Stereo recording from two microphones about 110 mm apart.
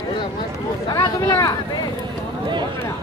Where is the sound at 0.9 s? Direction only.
35° left (ahead or behind).